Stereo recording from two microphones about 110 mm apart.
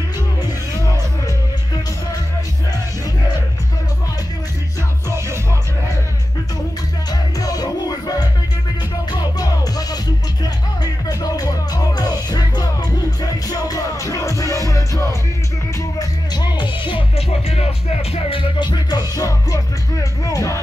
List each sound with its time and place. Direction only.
7.1 s music: 35° left (ahead or behind)
9.1 s music: 35° left (ahead or behind)
16.0 s music: 40° left (ahead or behind)
17.3 s music: 75° left (ahead or behind)
18.6 s music: 40° left (ahead or behind)